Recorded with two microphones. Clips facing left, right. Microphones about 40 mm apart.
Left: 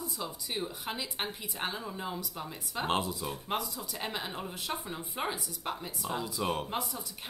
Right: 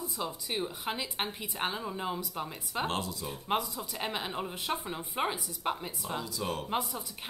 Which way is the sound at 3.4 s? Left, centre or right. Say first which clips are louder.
Right 5 dB; centre.